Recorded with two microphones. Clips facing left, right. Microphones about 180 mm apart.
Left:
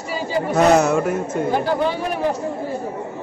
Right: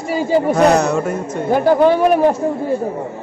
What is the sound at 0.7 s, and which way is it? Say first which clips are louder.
Speech: even; 5° left (ahead or behind).